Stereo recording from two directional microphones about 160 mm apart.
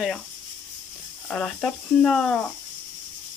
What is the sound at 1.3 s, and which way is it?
Speech, 5° left (ahead or behind).